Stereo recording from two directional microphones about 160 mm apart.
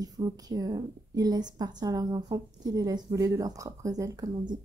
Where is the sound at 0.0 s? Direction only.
25° right (ahead or behind).